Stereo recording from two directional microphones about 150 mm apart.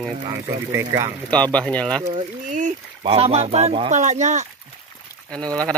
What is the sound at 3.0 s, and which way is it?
Speech, 40° right (ahead or behind).